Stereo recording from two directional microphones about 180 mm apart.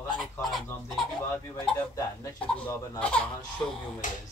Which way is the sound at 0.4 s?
Centre (ahead or behind).